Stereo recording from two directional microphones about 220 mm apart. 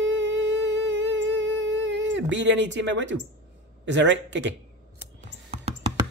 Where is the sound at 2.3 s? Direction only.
55° right (ahead or behind).